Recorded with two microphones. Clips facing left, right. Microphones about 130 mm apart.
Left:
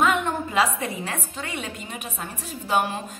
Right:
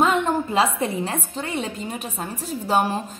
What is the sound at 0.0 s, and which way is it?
A woman's voice, 30° right (ahead or behind).